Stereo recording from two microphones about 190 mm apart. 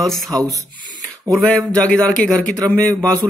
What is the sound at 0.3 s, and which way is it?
Speech, 20° right (ahead or behind).